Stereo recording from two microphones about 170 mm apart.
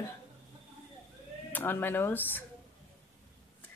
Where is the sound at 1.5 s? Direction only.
10° left (ahead or behind).